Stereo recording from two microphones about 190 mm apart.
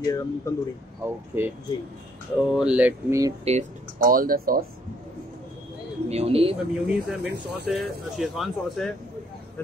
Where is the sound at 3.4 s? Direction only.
40° right (ahead or behind).